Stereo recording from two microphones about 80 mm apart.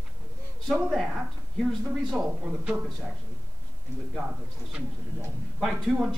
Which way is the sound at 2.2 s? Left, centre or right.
Centre.